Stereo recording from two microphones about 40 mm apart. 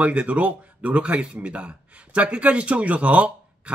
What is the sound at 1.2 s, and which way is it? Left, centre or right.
Speech, right.